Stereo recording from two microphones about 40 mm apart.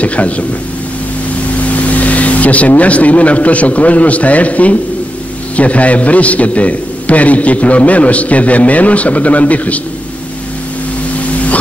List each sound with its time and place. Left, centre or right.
0.0 s a man's voice: left
1.7 s vehicle: left
2.8 s a man's voice: left